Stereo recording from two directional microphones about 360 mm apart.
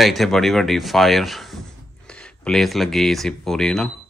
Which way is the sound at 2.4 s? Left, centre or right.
Centre.